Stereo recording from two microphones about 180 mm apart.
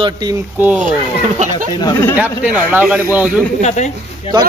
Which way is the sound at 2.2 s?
10° right (ahead or behind).